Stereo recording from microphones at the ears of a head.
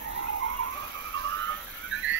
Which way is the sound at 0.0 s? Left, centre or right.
Right.